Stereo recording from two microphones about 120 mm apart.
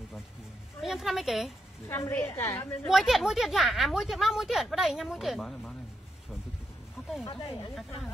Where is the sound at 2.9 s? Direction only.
Centre (ahead or behind).